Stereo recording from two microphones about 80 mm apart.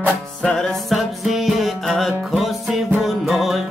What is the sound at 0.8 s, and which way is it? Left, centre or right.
Music, centre.